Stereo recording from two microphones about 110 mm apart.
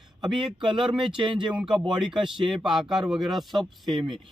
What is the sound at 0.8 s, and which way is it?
Speech, 5° right (ahead or behind).